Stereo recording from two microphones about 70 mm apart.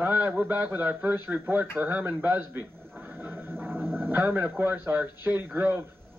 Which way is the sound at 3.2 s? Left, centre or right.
Right.